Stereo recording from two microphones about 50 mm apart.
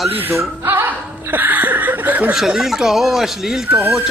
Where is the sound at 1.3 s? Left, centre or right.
Right.